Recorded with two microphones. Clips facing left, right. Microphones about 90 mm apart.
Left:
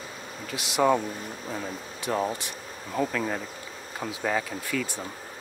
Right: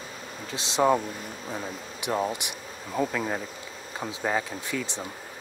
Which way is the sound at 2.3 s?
15° right (ahead or behind).